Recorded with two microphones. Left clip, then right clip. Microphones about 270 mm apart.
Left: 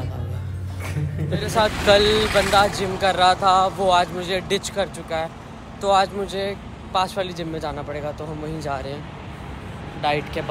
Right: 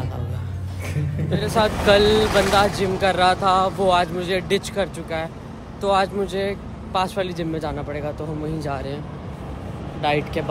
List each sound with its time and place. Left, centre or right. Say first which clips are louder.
1.4 s speech: even; centre
2.0 s speech: right 1 dB; right
2.5 s speech: even; centre
10.0 s speech: right 1 dB; centre